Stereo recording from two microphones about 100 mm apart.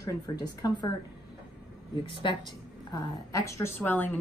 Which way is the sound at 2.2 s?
50° left (ahead or behind).